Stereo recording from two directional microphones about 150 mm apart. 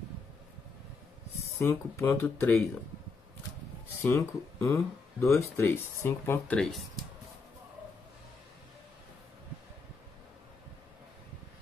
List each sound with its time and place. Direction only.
1.6 s speech: 15° left (ahead or behind)
4.0 s speech: 20° left (ahead or behind)